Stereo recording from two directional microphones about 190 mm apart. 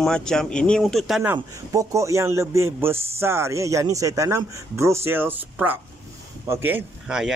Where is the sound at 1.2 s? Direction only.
15° right (ahead or behind).